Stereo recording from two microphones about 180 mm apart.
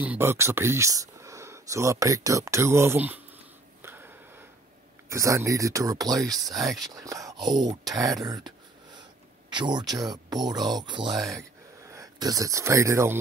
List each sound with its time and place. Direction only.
0.0 s speech: 10° right (ahead or behind)
3.8 s a sound: 10° right (ahead or behind)
5.1 s speech: 15° right (ahead or behind)